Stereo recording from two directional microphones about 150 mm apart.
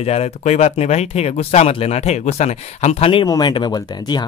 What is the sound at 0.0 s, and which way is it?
Speech, 45° left (ahead or behind).